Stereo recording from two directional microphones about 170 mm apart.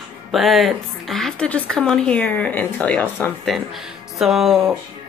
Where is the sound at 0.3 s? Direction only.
Centre (ahead or behind).